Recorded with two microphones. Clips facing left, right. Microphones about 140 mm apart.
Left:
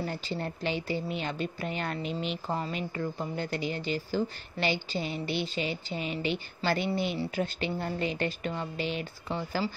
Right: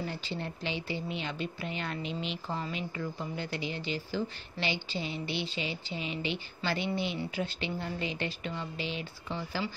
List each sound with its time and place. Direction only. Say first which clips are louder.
0.0 s speech: left 3 dB; 45° left (ahead or behind)